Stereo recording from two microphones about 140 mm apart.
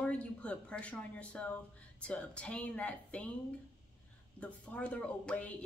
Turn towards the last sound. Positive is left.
turn(degrees=10)  # may be behind; listen again after turning